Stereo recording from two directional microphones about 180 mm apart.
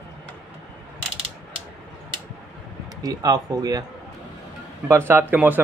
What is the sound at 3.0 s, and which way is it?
Speech, 20° right (ahead or behind).